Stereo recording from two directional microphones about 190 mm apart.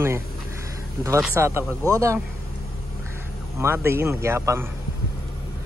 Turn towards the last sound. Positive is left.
turn(degrees=-15)  # may be behind; listen again after turning